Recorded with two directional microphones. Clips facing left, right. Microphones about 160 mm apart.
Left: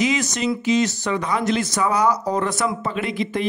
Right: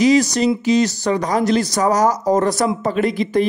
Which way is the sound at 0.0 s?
35° right (ahead or behind).